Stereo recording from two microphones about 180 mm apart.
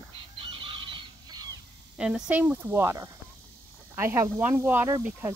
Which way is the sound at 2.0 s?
5° right (ahead or behind).